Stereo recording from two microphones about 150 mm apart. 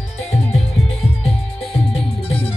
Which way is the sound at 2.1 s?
40° left (ahead or behind).